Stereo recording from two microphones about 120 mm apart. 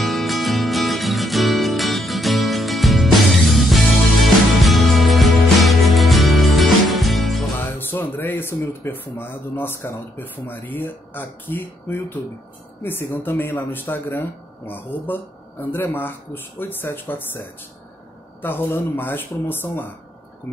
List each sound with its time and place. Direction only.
0.0 s music: centre (ahead or behind)
7.7 s speech: 15° left (ahead or behind)
15.6 s speech: 15° left (ahead or behind)
18.4 s speech: 15° left (ahead or behind)